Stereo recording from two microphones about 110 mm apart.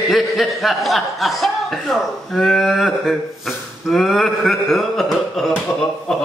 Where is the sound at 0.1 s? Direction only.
Centre (ahead or behind).